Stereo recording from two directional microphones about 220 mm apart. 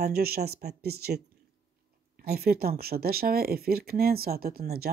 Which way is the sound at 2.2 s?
45° right (ahead or behind).